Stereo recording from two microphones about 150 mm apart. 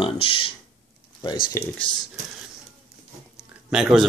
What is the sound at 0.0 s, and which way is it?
Speech, 35° left (ahead or behind).